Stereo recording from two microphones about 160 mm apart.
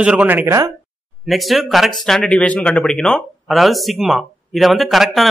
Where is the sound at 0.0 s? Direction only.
10° right (ahead or behind).